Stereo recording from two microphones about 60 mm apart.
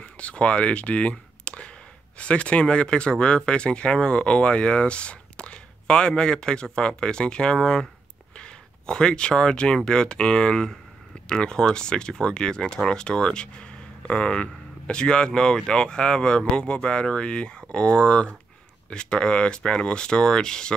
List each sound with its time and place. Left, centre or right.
0.0 s speech: centre